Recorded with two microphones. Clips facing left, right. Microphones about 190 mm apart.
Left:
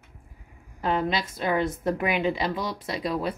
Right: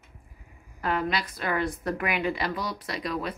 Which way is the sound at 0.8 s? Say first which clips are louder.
Left 2 dB; 25° left (ahead or behind).